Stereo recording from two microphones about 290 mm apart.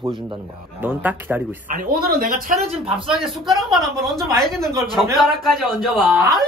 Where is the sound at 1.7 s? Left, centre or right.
Right.